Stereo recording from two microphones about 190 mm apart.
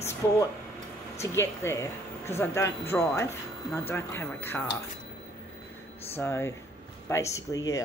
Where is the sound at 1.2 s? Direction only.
15° left (ahead or behind).